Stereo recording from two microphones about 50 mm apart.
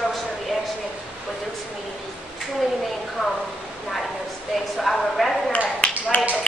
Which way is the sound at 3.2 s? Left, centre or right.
Centre.